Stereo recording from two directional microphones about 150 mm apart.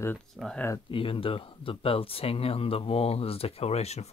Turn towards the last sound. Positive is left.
turn(degrees=45)  # may be behind; listen again after turning